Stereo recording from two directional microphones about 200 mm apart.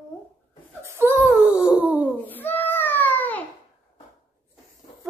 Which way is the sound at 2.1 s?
10° left (ahead or behind).